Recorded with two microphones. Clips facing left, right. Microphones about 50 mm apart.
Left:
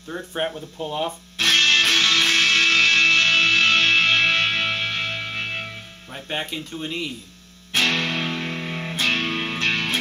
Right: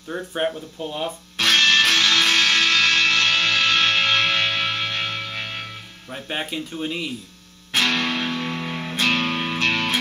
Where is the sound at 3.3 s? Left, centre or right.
Right.